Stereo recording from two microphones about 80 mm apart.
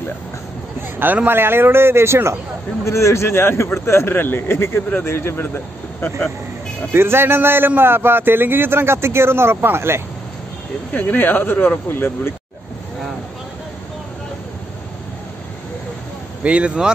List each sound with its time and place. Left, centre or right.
0.9 s a man's voice: right
2.8 s a man's voice: left
6.9 s a man's voice: right
10.9 s speech: left
16.4 s speech: centre